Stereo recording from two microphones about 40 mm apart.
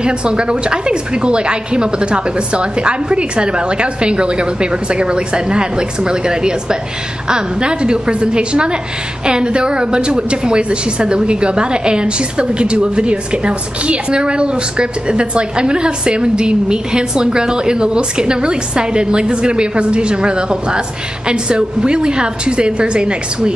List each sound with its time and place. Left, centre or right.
0.0 s a woman's voice: right